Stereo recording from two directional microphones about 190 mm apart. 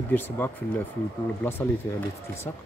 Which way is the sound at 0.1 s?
10° left (ahead or behind).